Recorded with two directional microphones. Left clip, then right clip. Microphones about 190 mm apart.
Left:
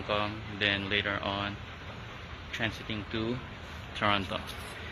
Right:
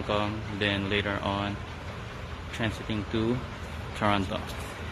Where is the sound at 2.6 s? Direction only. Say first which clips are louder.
Right 3 dB; 15° right (ahead or behind).